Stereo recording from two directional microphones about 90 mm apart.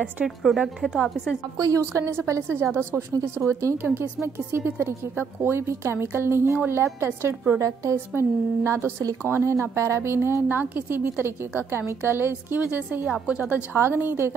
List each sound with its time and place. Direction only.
0.0 s a woman's voice: 5° right (ahead or behind)
1.6 s a woman's voice: 40° right (ahead or behind); by 13.1 s 20° right (ahead or behind)
13.1 s a woman's voice: 5° right (ahead or behind)
13.7 s a woman's voice: 25° right (ahead or behind)